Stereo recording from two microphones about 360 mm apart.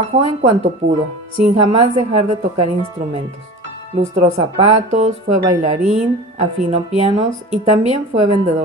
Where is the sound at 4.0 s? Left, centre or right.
Centre.